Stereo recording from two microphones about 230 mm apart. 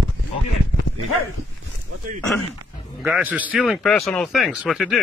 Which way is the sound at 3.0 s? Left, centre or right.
Centre.